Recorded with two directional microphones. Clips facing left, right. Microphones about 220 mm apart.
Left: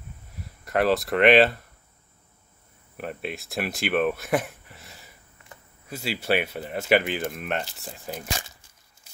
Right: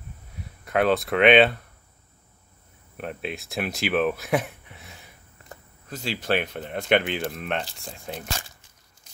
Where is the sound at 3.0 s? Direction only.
Centre (ahead or behind).